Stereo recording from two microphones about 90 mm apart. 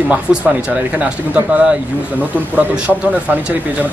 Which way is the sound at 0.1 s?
15° right (ahead or behind).